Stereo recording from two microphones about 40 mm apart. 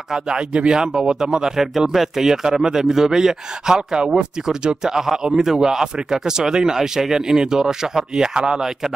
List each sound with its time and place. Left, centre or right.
0.1 s speech: right